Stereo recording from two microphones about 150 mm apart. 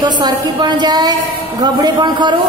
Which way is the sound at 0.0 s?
30° right (ahead or behind).